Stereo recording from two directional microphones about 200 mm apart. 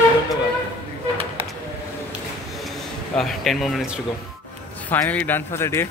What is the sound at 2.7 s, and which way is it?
A man's voice, centre (ahead or behind).